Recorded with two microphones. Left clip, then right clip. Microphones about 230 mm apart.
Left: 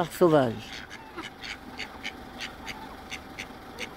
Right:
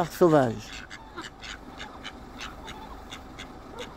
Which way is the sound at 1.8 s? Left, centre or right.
Right.